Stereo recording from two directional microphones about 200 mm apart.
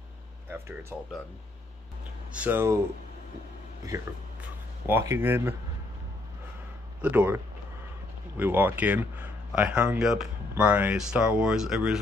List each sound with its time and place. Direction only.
0.5 s speech: 10° right (ahead or behind)
2.3 s speech: 10° right (ahead or behind)
3.8 s speech: 10° right (ahead or behind)
7.0 s speech: 10° right (ahead or behind)